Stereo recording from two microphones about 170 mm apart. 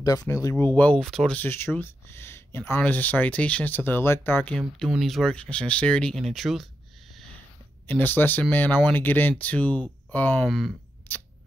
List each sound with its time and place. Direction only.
0.0 s speech: 20° left (ahead or behind); by 6.7 s centre (ahead or behind)
7.8 s speech: 10° left (ahead or behind)
11.1 s a sound: 10° left (ahead or behind)